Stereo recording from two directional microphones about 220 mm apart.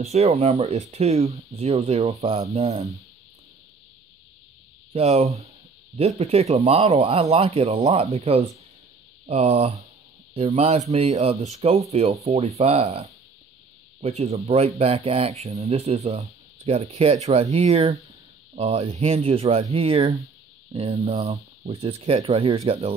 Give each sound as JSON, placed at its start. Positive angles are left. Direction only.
{"t": 0.0, "sound": "speech", "side_deg": -30}
{"t": 4.9, "sound": "speech", "side_deg": -30}